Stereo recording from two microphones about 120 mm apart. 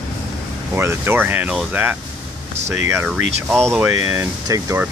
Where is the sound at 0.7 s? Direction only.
20° right (ahead or behind).